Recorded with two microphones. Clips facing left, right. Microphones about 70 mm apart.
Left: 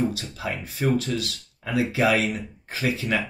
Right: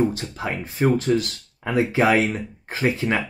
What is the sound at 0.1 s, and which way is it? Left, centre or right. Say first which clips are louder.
Speech: right 3 dB; right.